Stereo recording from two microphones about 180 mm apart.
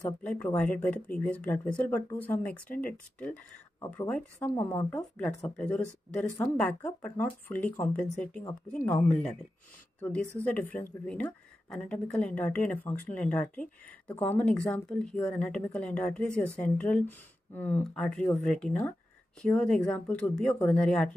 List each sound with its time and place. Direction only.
0.0 s speech: 5° left (ahead or behind)
4.9 s a woman's voice: 5° left (ahead or behind)